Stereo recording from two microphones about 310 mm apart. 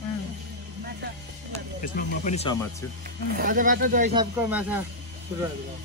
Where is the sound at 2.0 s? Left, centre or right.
Left.